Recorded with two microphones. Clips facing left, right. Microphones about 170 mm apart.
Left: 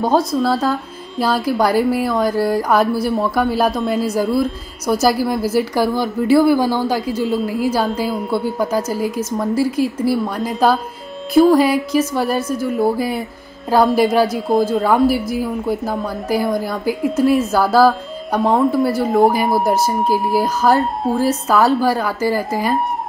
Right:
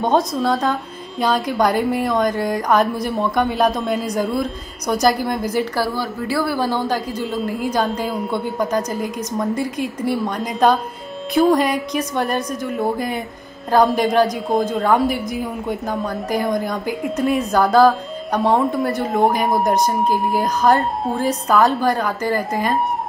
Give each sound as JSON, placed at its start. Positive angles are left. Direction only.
{"t": 0.0, "sound": "a woman's voice", "side_deg": 5}
{"t": 5.8, "sound": "a woman's voice", "side_deg": 20}